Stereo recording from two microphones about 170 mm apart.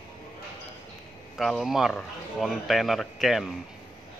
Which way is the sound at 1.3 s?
Centre (ahead or behind).